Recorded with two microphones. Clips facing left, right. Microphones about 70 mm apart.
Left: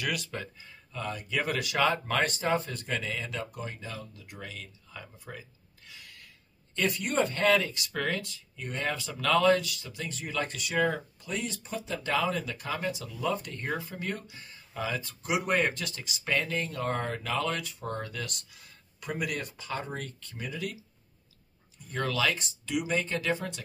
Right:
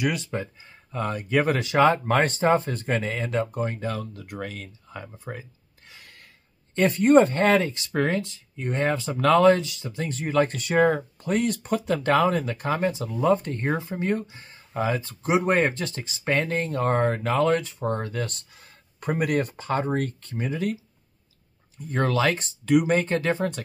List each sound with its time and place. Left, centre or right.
0.0 s speech: right
0.9 s speech: right
21.8 s speech: right